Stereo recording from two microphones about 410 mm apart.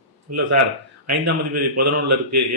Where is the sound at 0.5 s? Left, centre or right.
Right.